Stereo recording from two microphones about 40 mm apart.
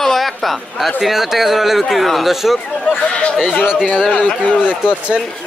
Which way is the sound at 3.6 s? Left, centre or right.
Right.